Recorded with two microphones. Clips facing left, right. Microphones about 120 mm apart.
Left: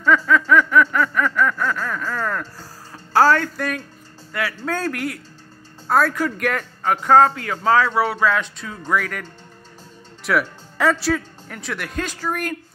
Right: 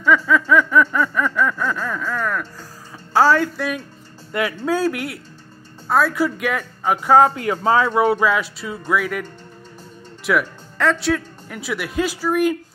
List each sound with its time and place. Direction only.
0.0 s speech: 5° right (ahead or behind)
4.3 s speech: 20° right (ahead or behind)
4.6 s speech: 10° right (ahead or behind)
10.2 s speech: 5° left (ahead or behind)